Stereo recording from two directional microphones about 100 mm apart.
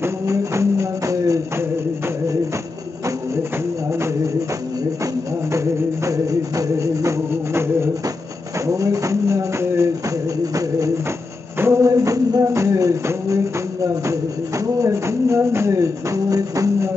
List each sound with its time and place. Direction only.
0.0 s music: 30° right (ahead or behind)
5.5 s music: 30° right (ahead or behind)
14.8 s music: 30° right (ahead or behind)